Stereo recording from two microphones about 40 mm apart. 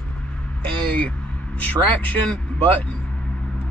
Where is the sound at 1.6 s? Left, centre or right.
Left.